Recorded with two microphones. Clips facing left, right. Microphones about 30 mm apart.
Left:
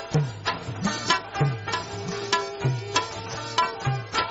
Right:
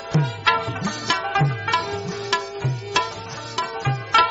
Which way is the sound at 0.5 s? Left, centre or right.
Right.